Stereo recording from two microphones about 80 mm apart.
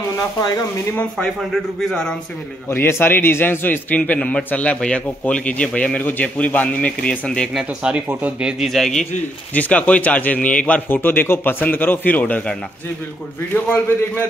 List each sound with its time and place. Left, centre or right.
1.1 s a man's voice: centre
2.7 s a man's voice: left
7.5 s speech: centre
8.6 s a man's voice: centre
9.5 s a man's voice: centre
11.0 s a man's voice: left